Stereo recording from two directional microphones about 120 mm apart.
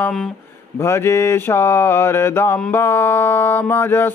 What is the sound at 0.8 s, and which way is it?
Mantra, 20° left (ahead or behind).